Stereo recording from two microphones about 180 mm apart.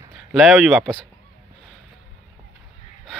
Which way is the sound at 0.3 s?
Centre (ahead or behind).